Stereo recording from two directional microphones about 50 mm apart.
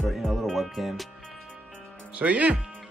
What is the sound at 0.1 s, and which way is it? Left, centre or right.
Music, centre.